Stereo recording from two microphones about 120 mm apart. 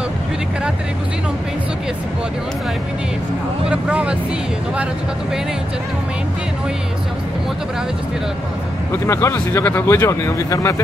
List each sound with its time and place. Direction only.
3.7 s speech: 10° right (ahead or behind)
9.0 s speech: 20° left (ahead or behind)